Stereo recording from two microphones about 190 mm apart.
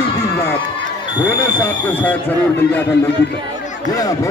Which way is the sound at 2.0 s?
10° left (ahead or behind).